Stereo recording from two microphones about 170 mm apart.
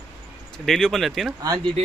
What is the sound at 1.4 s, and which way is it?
Speech, 20° right (ahead or behind).